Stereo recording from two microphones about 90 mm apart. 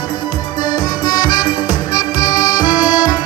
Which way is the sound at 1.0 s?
55° left (ahead or behind).